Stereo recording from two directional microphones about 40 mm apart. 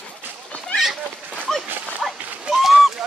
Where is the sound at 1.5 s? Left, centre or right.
Centre.